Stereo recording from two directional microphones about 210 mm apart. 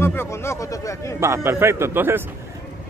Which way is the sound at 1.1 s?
10° right (ahead or behind).